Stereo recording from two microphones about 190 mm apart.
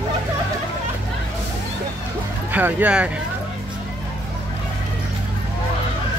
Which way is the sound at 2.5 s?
10° right (ahead or behind).